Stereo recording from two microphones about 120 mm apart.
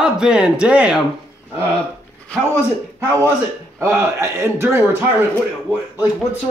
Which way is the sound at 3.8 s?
20° right (ahead or behind).